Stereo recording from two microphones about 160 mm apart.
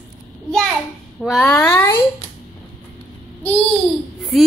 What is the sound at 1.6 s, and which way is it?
Speech, 15° left (ahead or behind).